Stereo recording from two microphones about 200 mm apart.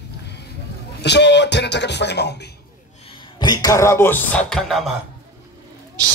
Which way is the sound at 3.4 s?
20° left (ahead or behind).